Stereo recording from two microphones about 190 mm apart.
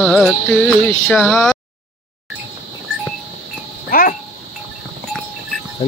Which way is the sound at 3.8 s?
50° left (ahead or behind).